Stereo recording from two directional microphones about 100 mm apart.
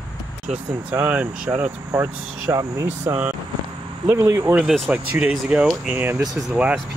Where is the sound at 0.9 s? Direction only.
15° right (ahead or behind).